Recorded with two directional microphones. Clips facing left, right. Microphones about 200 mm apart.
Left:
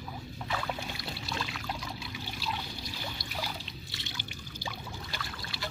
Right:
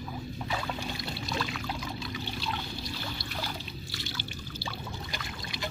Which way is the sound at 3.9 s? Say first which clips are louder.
Right 5 dB; 20° left (ahead or behind).